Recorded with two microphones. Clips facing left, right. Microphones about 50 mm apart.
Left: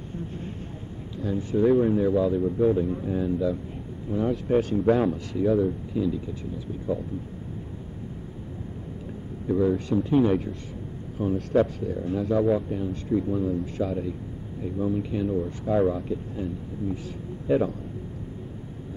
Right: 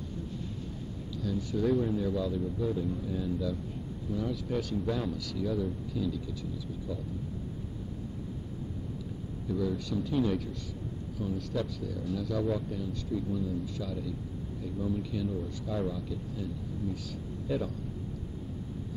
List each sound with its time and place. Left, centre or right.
0.1 s vehicle: left
1.1 s speech: left
9.5 s speech: left